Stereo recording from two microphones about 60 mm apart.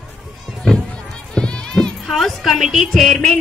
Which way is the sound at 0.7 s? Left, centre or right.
Centre.